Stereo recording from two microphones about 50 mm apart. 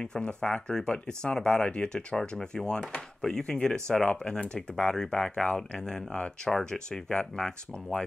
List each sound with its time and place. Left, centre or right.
0.0 s speech: centre